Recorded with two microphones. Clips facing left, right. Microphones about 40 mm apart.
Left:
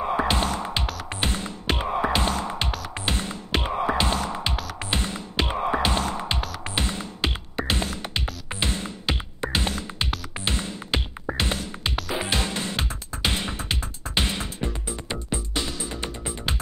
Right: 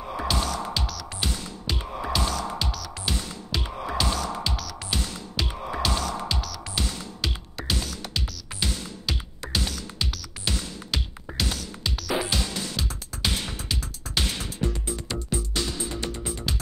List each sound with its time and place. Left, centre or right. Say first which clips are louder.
0.0 s music: left 5 dB; left